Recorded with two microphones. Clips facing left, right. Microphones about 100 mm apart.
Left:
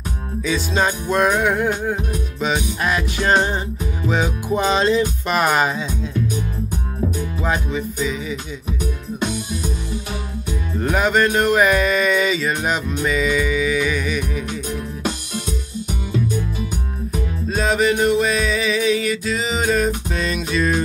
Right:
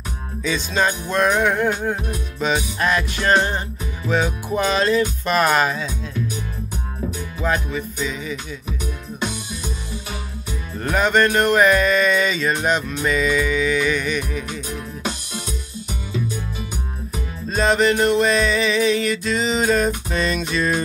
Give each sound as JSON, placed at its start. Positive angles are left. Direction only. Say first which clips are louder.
{"t": 0.4, "sound": "music", "louder": "left 1 dB", "side_deg": 10}
{"t": 7.4, "sound": "music", "louder": "right 1 dB", "side_deg": 15}
{"t": 10.8, "sound": "music", "louder": "even", "side_deg": 15}
{"t": 17.5, "sound": "music", "louder": "right 1 dB", "side_deg": 5}